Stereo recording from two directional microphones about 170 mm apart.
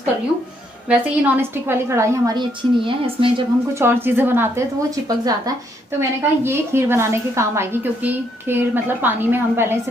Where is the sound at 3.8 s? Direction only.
15° right (ahead or behind).